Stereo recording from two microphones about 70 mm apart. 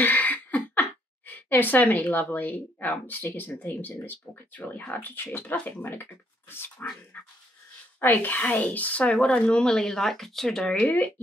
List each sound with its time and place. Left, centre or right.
0.0 s a sound: left
3.3 s speech: left
6.5 s dog: left
8.0 s speech: left